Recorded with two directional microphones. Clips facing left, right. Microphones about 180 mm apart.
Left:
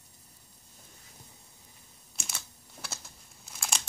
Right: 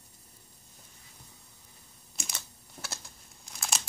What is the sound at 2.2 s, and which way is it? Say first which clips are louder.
Typing: right 1 dB; centre (ahead or behind).